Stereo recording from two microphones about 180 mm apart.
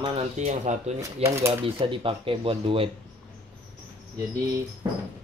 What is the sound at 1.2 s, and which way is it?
Speech, 15° right (ahead or behind).